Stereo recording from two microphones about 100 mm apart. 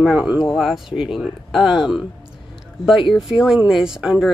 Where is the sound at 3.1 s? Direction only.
5° right (ahead or behind).